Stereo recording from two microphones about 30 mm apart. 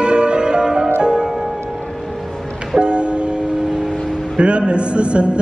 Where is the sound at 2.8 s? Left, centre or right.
Right.